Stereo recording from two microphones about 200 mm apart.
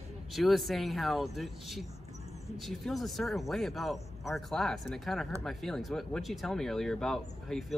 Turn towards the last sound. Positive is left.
turn(degrees=0)  # may be behind; listen again after turning